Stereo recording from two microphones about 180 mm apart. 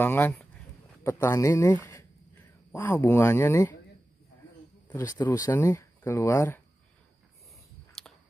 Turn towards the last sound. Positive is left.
turn(degrees=15)  # may be behind; listen again after turning